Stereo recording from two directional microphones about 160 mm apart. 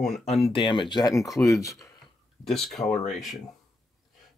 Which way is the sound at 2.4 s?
Centre (ahead or behind).